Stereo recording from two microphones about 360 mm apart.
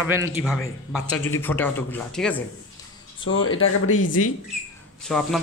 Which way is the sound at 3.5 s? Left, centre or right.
Left.